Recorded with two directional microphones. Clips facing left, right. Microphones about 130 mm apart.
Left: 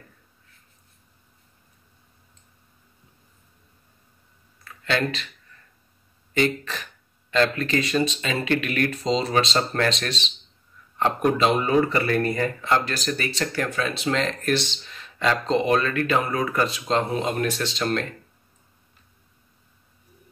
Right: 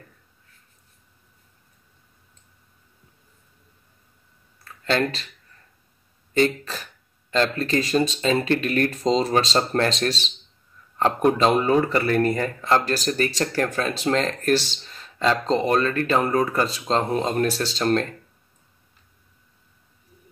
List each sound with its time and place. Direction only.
4.8 s speech: 35° right (ahead or behind)
7.3 s speech: 35° right (ahead or behind)